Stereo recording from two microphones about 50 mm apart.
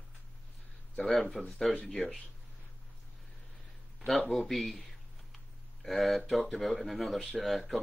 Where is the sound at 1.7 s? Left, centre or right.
Centre.